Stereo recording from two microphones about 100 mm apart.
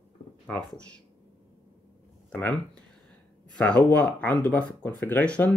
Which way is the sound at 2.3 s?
15° left (ahead or behind).